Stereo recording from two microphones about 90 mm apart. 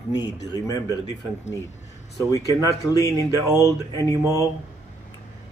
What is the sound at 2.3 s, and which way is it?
Speech, 40° left (ahead or behind).